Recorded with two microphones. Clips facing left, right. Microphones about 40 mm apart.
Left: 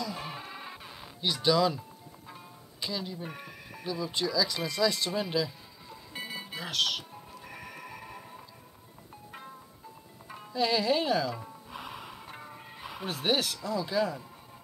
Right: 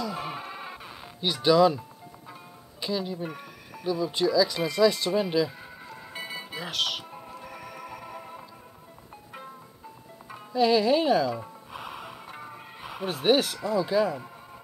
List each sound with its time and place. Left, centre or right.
0.0 s music: centre
2.8 s speech: centre
3.3 s music: centre
3.8 s speech: centre
6.1 s music: centre
7.1 s music: right
7.4 s music: centre
8.2 s music: right
10.2 s music: centre
13.7 s speech: centre